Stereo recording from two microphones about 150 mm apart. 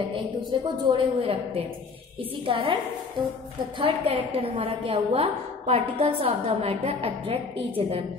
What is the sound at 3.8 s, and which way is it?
A woman's voice, 40° right (ahead or behind).